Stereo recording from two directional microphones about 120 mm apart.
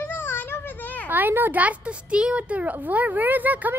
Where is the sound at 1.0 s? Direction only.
15° right (ahead or behind).